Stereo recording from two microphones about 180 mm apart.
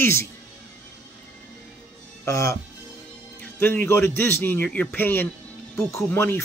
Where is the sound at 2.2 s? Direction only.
15° left (ahead or behind).